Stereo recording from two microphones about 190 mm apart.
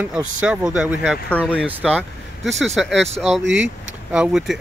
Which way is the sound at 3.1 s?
35° right (ahead or behind).